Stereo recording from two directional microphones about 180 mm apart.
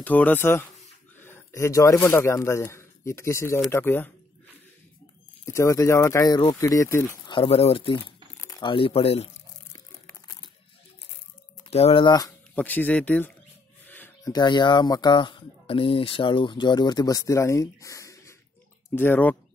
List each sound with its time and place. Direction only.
0.0 s speech: 10° left (ahead or behind)
5.4 s speech: 15° left (ahead or behind); by 9.3 s 35° left (ahead or behind)
9.7 s crumpling: 20° left (ahead or behind)
11.7 s speech: 30° left (ahead or behind)
12.5 s speech: 10° left (ahead or behind)
13.8 s a sound: 10° left (ahead or behind)
14.3 s speech: 25° left (ahead or behind)